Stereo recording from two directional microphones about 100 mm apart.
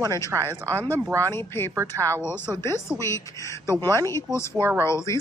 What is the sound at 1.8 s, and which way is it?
Speech, 30° right (ahead or behind).